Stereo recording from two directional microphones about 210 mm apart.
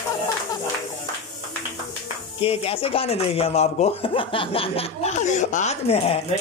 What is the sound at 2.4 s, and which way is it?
Speech, 25° left (ahead or behind).